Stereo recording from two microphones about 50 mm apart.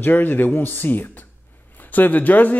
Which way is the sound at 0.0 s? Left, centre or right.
Left.